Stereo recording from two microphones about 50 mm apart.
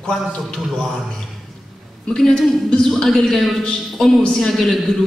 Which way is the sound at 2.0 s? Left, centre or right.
Centre.